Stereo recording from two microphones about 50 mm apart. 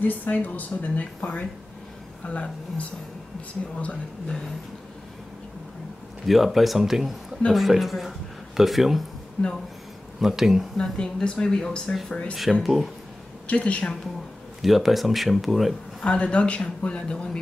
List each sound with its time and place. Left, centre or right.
0.0 s speech: left
6.2 s speech: centre
9.4 s speech: left
10.2 s speech: centre
10.8 s speech: centre
12.6 s speech: centre
13.5 s speech: left
14.6 s speech: centre
16.0 s speech: centre